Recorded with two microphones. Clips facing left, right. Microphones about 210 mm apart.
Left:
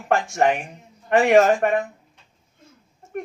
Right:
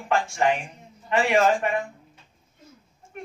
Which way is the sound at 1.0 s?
45° left (ahead or behind).